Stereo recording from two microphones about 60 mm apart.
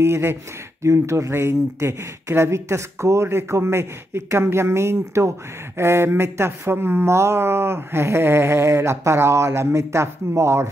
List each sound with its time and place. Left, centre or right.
0.0 s speech: right